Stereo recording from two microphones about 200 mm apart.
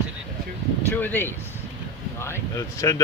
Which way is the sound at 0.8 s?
10° left (ahead or behind).